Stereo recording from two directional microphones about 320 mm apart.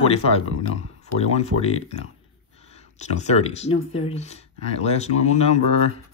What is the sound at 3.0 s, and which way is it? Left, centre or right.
Speech, left.